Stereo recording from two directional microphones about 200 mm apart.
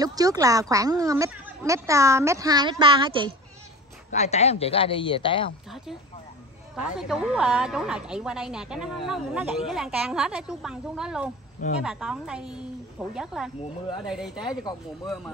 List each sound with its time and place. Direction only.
0.0 s speech: 20° right (ahead or behind)
4.1 s speech: 35° left (ahead or behind)
6.7 s a woman's voice: centre (ahead or behind)